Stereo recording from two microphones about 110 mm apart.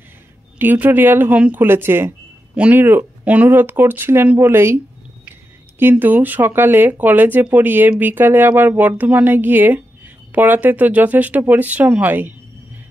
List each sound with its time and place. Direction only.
0.6 s speech: 15° right (ahead or behind)
5.8 s speech: 20° right (ahead or behind)